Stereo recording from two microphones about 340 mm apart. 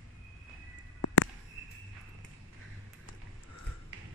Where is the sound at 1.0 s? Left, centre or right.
Left.